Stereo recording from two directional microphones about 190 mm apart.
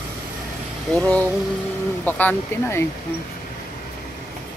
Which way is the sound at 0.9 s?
5° left (ahead or behind).